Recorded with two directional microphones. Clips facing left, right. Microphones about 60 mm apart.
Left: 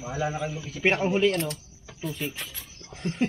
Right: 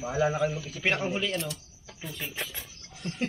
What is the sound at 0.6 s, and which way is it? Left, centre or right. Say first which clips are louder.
Speech: left 4 dB; left.